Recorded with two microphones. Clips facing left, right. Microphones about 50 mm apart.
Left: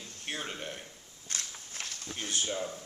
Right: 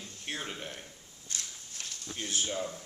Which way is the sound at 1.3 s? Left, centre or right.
Left.